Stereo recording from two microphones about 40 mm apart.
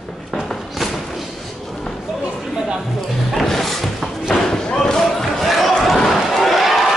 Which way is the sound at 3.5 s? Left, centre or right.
Centre.